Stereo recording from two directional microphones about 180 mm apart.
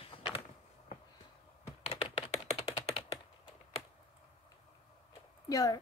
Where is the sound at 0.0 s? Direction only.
30° left (ahead or behind).